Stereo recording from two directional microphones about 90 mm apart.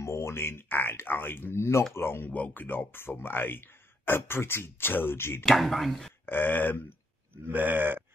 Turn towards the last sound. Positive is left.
turn(degrees=-20)  # may be behind; listen again after turning